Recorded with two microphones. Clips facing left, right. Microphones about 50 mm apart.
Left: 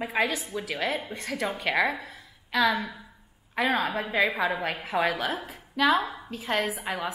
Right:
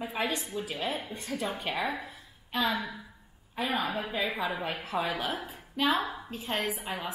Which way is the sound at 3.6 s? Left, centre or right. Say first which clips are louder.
Left 5 dB; left.